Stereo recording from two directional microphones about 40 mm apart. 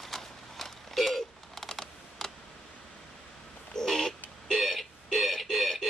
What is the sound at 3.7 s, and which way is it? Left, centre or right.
Crow, centre.